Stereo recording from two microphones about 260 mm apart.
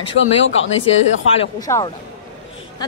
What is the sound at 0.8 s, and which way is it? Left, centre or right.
Speech, left.